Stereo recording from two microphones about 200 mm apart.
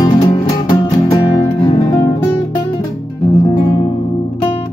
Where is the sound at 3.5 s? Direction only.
25° left (ahead or behind).